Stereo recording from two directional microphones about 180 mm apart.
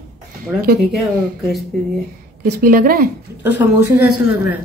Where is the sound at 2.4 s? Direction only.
55° right (ahead or behind).